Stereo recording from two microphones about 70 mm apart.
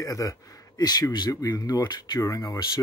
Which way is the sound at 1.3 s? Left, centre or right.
Left.